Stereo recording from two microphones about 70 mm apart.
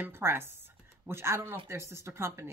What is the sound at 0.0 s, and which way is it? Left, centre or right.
Speech, right.